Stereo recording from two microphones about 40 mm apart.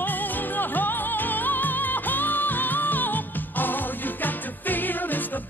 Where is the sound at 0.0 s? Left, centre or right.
Left.